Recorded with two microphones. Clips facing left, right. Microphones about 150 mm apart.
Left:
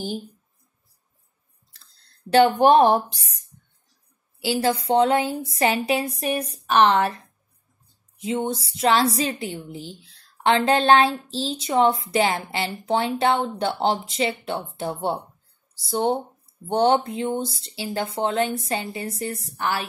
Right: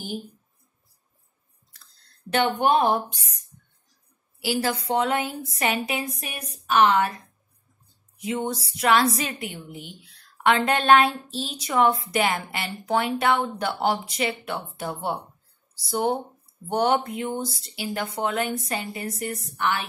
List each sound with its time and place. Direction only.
2.3 s speech: 35° left (ahead or behind)
4.4 s a woman's voice: 30° left (ahead or behind)
8.5 s a woman's voice: 25° left (ahead or behind)